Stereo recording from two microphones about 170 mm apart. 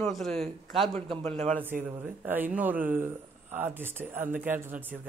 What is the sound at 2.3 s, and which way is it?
Speech, 10° right (ahead or behind).